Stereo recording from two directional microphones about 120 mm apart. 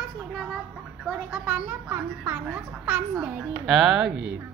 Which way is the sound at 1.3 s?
10° right (ahead or behind).